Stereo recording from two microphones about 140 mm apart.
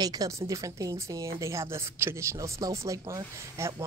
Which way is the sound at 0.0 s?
25° right (ahead or behind).